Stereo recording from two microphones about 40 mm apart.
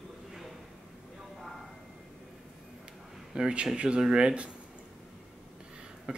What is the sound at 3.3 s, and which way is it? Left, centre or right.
Speech, right.